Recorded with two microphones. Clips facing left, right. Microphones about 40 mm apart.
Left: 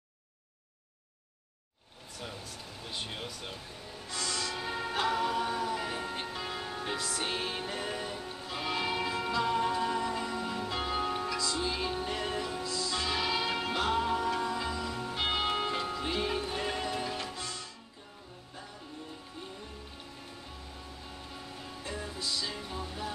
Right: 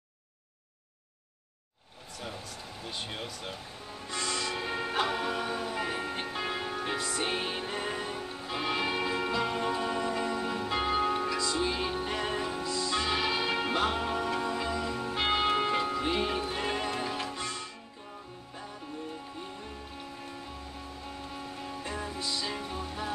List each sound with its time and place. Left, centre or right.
2.8 s speech: centre
4.1 s music: right
17.4 s music: right
21.6 s music: centre